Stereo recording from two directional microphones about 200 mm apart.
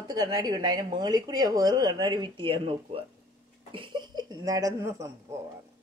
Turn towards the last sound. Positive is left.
turn(degrees=-15)  # may be behind; listen again after turning